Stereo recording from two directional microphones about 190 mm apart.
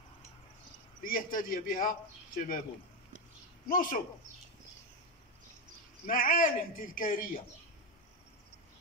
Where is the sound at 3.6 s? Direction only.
45° left (ahead or behind).